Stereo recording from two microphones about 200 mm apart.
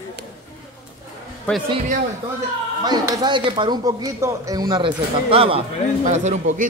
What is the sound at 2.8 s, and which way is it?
A man's voice, 20° right (ahead or behind).